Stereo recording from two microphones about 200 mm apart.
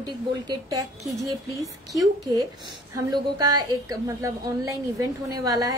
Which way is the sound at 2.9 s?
15° right (ahead or behind).